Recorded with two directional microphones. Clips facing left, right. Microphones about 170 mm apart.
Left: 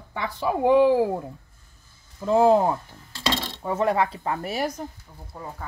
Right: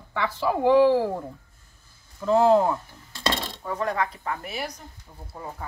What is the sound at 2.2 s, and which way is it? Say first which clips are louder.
Speech: left 1 dB; 15° left (ahead or behind).